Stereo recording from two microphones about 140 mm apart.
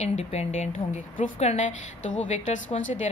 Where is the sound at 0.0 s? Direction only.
50° left (ahead or behind).